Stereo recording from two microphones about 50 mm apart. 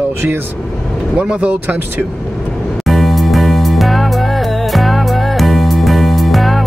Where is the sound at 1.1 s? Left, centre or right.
Right.